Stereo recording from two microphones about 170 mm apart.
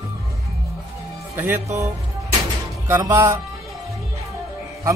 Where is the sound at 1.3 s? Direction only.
15° right (ahead or behind).